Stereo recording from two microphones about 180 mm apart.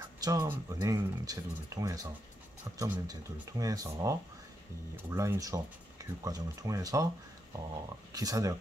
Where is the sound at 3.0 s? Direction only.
20° right (ahead or behind).